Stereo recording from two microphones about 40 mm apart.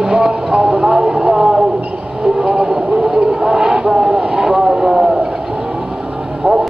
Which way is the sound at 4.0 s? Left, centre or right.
Centre.